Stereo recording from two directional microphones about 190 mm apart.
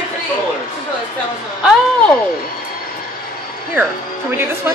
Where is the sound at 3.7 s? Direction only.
10° right (ahead or behind).